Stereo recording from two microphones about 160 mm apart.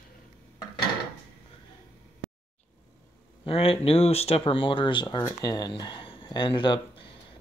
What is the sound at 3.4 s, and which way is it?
Speech, 35° left (ahead or behind).